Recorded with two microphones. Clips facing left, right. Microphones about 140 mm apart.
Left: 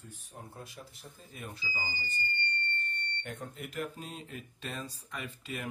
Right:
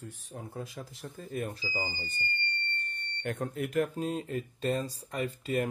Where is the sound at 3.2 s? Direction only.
60° right (ahead or behind).